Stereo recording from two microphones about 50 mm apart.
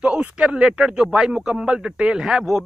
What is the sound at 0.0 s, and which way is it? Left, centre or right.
Speech, right.